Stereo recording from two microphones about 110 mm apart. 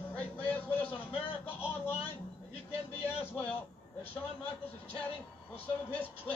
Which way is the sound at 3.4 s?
15° left (ahead or behind).